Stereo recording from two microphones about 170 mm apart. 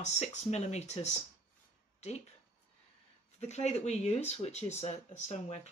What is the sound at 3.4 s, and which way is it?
Speech, 40° left (ahead or behind).